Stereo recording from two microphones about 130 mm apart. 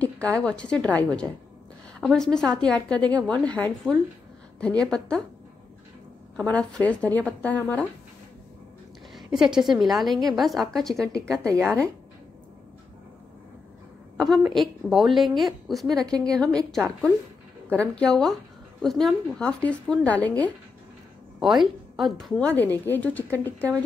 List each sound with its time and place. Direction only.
0.0 s speech: 10° left (ahead or behind)
6.5 s speech: 10° left (ahead or behind)
9.1 s a woman's voice: 5° right (ahead or behind)
11.2 s a woman's voice: 25° right (ahead or behind)
14.1 s a woman's voice: centre (ahead or behind)
16.0 s a woman's voice: 30° right (ahead or behind)
16.3 s a woman's voice: 5° left (ahead or behind)
21.4 s a woman's voice: centre (ahead or behind)
22.6 s speech: 15° left (ahead or behind)